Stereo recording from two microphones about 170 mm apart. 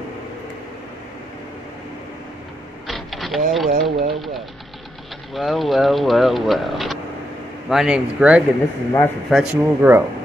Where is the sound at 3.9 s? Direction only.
30° right (ahead or behind).